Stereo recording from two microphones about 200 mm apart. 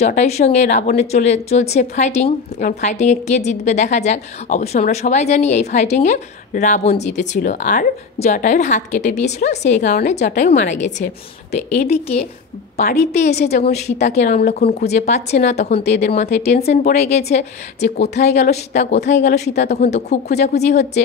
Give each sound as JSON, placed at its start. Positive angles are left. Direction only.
{"t": 0.0, "sound": "speech", "side_deg": 35}
{"t": 13.5, "sound": "a woman's voice", "side_deg": 55}
{"t": 13.8, "sound": "speech", "side_deg": 35}
{"t": 14.8, "sound": "speech", "side_deg": 35}
{"t": 18.1, "sound": "a woman's voice", "side_deg": 55}
{"t": 19.8, "sound": "speech", "side_deg": 35}